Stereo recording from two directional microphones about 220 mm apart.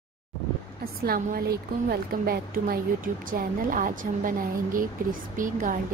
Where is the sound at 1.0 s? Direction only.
40° right (ahead or behind).